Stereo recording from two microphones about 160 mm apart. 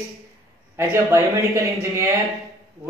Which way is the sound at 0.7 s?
15° right (ahead or behind).